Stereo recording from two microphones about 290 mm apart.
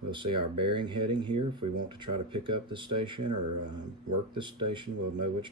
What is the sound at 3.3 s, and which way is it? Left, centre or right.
Speech, right.